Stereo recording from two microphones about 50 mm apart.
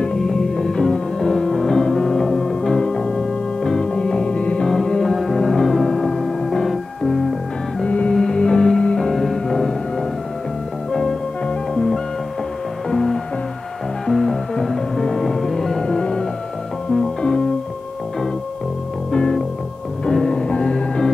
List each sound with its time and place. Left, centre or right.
0.0 s music: centre
4.6 s music: centre
7.8 s music: left
8.1 s music: centre
15.8 s music: centre
19.1 s music: centre